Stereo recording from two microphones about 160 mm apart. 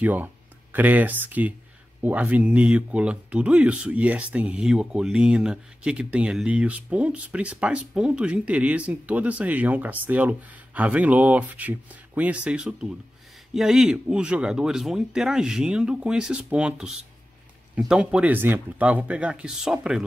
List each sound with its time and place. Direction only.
0.0 s speech: 10° right (ahead or behind)